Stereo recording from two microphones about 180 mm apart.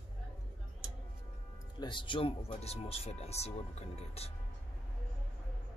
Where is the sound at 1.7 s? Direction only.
25° left (ahead or behind).